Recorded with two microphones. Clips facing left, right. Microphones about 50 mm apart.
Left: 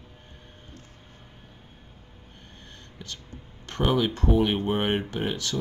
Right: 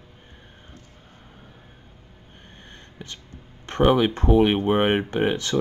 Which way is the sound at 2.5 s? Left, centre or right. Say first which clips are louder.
Right 4 dB; right.